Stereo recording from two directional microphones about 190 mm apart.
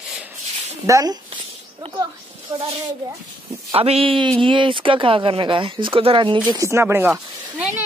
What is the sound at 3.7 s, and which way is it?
Speech, 30° right (ahead or behind).